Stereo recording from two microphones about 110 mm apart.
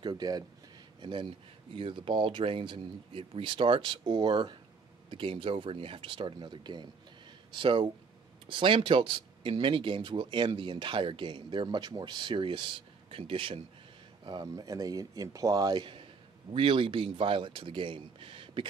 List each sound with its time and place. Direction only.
0.0 s speech: 40° right (ahead or behind)
1.8 s speech: 55° right (ahead or behind)
5.1 s speech: 55° right (ahead or behind)
14.2 s speech: 40° right (ahead or behind)